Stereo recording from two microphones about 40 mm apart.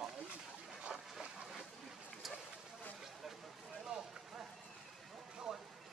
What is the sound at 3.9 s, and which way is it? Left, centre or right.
Run, right.